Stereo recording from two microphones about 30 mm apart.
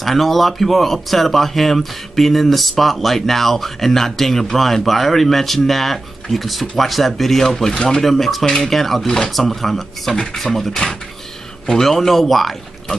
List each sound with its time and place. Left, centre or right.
0.0 s speech: centre
8.0 s speech: centre
9.0 s speech: centre
9.3 s speech: centre